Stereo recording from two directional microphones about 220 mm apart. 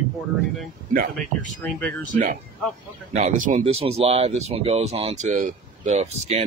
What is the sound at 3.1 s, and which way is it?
Speech, 35° right (ahead or behind).